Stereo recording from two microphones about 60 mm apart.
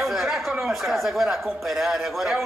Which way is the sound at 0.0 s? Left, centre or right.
Centre.